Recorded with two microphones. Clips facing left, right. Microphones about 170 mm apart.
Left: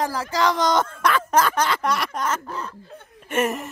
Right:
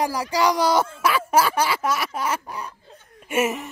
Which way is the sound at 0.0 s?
15° right (ahead or behind).